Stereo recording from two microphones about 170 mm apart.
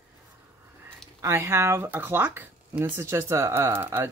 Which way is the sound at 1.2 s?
15° right (ahead or behind).